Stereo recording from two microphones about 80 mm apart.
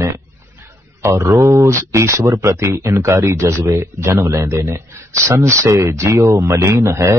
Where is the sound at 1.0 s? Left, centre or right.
Right.